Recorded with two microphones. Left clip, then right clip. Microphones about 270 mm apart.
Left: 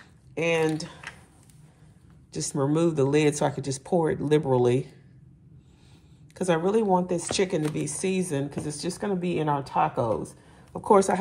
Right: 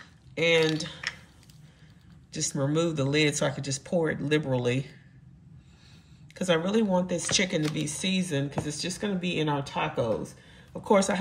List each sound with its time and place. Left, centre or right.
0.3 s speech: centre
2.3 s speech: centre
6.3 s speech: centre